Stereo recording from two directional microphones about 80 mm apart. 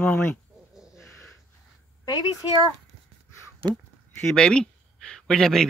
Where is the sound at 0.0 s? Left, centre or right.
Left.